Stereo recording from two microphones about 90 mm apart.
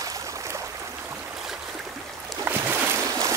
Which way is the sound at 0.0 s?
40° right (ahead or behind).